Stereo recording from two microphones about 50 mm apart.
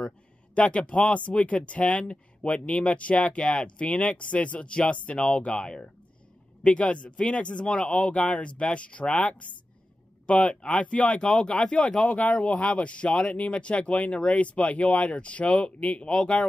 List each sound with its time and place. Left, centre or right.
0.6 s speech: left